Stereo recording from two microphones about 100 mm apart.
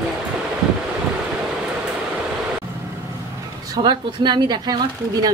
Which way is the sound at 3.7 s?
45° right (ahead or behind).